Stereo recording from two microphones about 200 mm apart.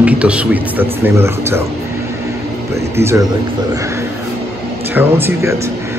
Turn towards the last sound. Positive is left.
turn(degrees=-15)  # may be behind; listen again after turning